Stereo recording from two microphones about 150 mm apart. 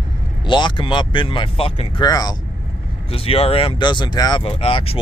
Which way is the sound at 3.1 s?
40° left (ahead or behind).